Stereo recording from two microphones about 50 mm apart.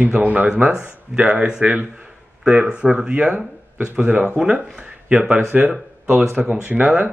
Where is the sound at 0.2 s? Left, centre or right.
Right.